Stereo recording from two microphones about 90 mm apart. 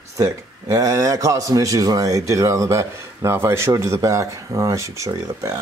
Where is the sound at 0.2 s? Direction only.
40° right (ahead or behind).